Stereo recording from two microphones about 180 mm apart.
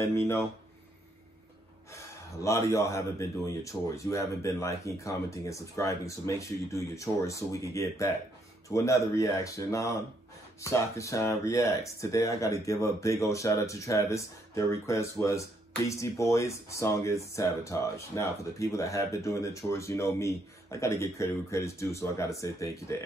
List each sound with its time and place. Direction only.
1.9 s speech: 15° left (ahead or behind)